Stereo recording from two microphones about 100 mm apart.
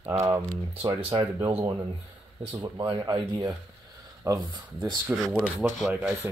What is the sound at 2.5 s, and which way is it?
Speech, 50° right (ahead or behind).